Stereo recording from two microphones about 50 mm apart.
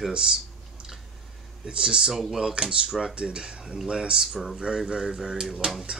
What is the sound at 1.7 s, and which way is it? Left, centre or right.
Speech, centre.